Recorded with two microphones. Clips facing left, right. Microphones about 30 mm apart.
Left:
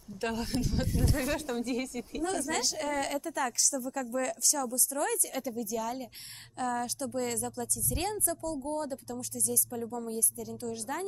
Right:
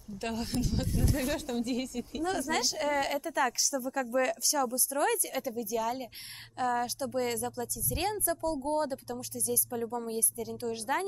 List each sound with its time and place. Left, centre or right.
0.2 s a woman's voice: centre; by 5.2 s right
5.3 s a woman's voice: centre
8.4 s speech: right
9.1 s a woman's voice: centre